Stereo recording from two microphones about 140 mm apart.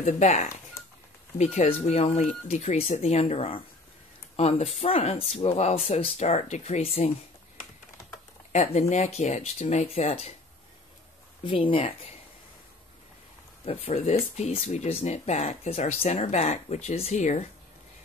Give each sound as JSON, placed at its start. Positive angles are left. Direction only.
{"t": 0.0, "sound": "speech", "side_deg": 55}
{"t": 0.8, "sound": "a sound", "side_deg": 20}
{"t": 1.4, "sound": "speech", "side_deg": 50}
{"t": 8.5, "sound": "speech", "side_deg": 55}
{"t": 11.4, "sound": "speech", "side_deg": 40}
{"t": 13.7, "sound": "speech", "side_deg": 45}